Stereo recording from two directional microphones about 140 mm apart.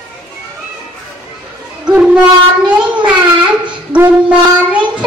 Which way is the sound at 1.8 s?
5° right (ahead or behind).